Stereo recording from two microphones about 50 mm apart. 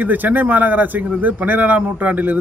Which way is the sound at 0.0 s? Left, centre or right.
Right.